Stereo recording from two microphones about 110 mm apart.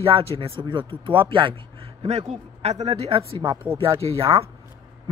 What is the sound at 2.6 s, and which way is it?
A man's voice, 80° right.